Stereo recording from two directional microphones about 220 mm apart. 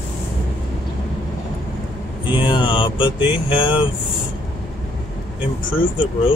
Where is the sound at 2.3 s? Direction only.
20° left (ahead or behind).